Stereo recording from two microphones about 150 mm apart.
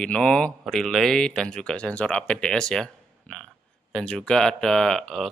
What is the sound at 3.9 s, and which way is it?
Speech, 5° left (ahead or behind).